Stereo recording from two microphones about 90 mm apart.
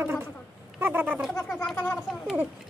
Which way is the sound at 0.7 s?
20° right (ahead or behind).